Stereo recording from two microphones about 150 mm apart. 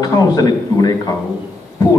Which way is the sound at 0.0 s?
25° left (ahead or behind).